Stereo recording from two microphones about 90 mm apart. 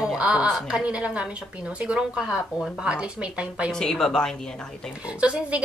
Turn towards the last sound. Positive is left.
turn(degrees=-15)  # may be behind; listen again after turning